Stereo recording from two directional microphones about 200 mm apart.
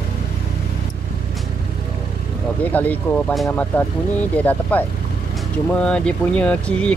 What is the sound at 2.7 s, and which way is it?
Speech, 5° left (ahead or behind).